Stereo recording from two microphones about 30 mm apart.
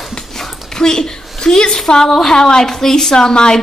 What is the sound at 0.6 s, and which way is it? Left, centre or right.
A woman's voice, left.